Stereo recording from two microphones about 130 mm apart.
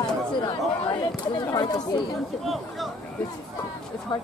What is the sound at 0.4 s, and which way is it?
Chatter, 35° left (ahead or behind).